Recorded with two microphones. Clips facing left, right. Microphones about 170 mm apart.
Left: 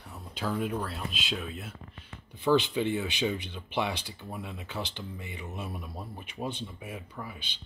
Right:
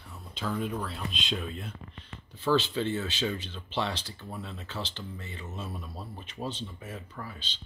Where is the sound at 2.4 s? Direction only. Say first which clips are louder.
Left 2 dB; 15° left (ahead or behind).